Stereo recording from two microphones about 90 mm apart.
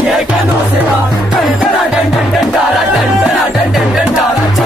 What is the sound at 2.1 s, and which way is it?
Music, centre (ahead or behind).